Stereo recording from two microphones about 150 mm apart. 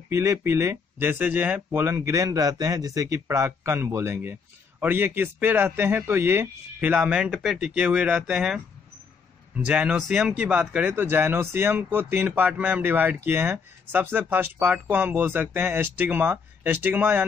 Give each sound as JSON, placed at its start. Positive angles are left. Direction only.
{"t": 0.1, "sound": "speech", "side_deg": -20}
{"t": 9.7, "sound": "speech", "side_deg": -10}